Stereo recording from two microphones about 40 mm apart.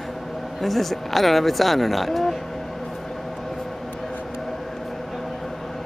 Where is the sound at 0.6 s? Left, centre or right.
Centre.